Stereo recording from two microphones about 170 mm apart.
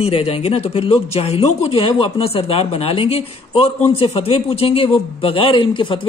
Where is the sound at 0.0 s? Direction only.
35° left (ahead or behind).